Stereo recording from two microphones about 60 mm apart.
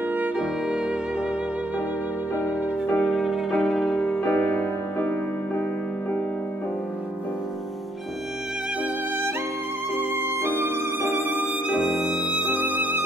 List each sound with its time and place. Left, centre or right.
0.4 s music: centre
2.9 s music: centre
4.2 s music: left
10.2 s music: right
11.1 s music: right
12.4 s music: right